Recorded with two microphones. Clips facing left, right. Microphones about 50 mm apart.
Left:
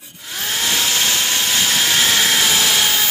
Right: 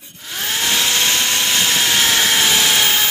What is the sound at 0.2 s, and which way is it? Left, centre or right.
Vacuum cleaner, right.